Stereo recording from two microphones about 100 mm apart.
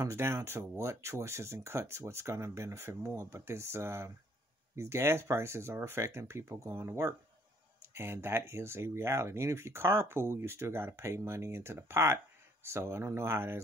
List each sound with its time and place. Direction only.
0.0 s speech: 25° right (ahead or behind)